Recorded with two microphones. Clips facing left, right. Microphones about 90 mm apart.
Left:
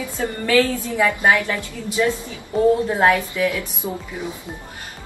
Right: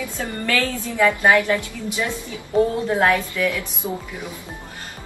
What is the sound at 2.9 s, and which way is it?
A woman's voice, 10° left (ahead or behind).